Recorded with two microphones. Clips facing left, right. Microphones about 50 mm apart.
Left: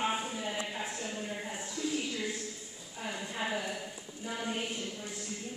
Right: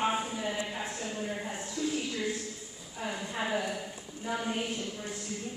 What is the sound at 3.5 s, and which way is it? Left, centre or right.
Speech, centre.